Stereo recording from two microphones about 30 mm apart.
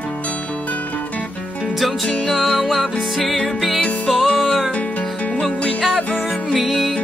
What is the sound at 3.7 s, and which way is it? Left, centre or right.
Music, centre.